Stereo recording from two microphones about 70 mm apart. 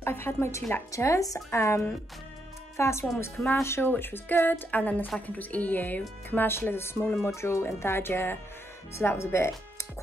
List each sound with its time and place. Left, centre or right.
0.0 s speech: left
0.9 s speech: left
3.9 s a woman's voice: left